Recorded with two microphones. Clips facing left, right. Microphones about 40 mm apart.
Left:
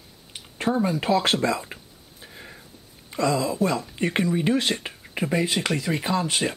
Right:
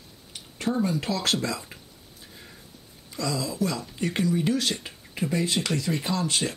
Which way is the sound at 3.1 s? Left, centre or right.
Left.